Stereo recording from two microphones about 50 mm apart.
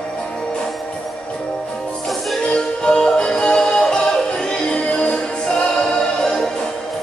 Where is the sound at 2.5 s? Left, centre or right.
Centre.